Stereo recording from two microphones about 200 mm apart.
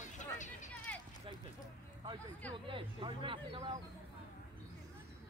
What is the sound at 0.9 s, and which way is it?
Clip-clop, 5° left (ahead or behind).